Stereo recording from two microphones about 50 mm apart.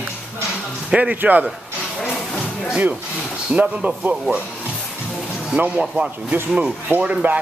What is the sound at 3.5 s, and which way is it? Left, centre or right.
Speech, right.